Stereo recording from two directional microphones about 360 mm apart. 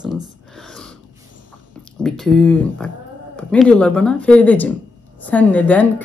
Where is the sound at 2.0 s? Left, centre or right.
Centre.